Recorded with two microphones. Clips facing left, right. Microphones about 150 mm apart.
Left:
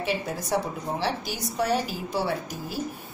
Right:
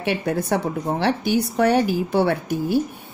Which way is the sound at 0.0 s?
65° right (ahead or behind).